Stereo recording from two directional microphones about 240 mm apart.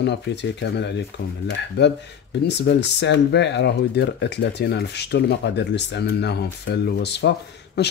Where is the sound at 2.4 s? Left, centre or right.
Left.